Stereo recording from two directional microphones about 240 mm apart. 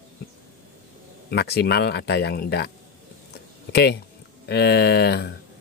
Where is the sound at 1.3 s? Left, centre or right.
Left.